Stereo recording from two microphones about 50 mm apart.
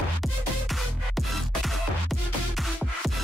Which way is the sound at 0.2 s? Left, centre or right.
Centre.